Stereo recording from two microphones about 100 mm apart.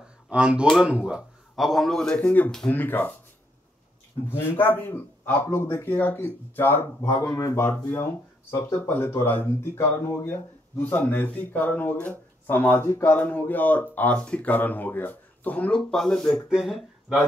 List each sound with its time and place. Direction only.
0.3 s speech: 10° right (ahead or behind)
0.7 s a man's voice: centre (ahead or behind); by 3.1 s 20° left (ahead or behind)
4.3 s a man's voice: 25° left (ahead or behind); by 17.2 s centre (ahead or behind)